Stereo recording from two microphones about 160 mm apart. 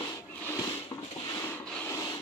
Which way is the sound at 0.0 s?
20° left (ahead or behind).